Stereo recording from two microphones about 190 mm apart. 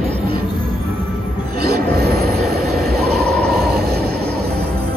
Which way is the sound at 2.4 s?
55° right (ahead or behind).